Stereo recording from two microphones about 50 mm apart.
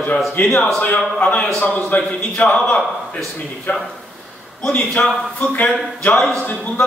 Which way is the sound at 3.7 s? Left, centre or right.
Left.